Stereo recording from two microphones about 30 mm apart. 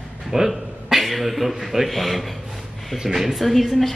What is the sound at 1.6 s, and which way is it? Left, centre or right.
Speech, centre.